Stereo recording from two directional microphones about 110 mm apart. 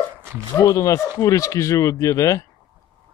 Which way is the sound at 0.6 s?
30° left (ahead or behind).